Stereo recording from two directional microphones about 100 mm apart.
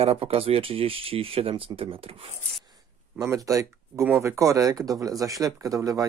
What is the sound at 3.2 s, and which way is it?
Speech, 35° right (ahead or behind).